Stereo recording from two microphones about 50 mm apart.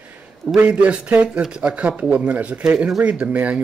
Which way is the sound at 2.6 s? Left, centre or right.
Centre.